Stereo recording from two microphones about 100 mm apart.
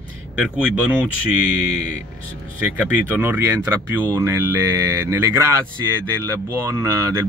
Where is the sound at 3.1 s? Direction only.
20° right (ahead or behind).